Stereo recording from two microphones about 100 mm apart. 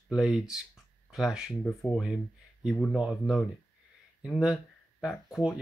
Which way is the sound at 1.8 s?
5° left (ahead or behind).